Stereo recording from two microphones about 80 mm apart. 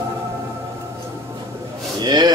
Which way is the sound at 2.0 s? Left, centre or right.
Right.